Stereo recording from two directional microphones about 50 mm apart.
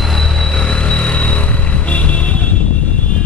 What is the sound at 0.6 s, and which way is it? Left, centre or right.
Vehicle, centre.